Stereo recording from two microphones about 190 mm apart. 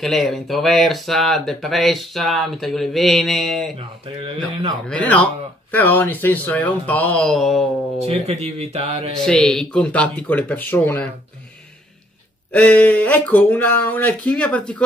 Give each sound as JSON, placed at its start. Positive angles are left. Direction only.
{"t": 0.0, "sound": "speech", "side_deg": 0}
{"t": 4.8, "sound": "speech", "side_deg": 5}
{"t": 8.0, "sound": "speech", "side_deg": -35}
{"t": 9.2, "sound": "speech", "side_deg": 5}
{"t": 12.5, "sound": "speech", "side_deg": 5}